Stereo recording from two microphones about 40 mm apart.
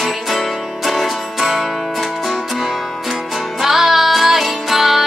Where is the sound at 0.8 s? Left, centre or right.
Centre.